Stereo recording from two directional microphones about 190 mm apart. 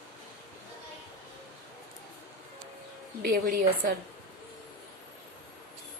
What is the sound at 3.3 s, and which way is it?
Speech, 55° right (ahead or behind).